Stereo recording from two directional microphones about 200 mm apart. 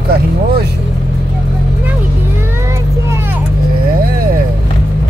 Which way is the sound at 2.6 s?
15° right (ahead or behind).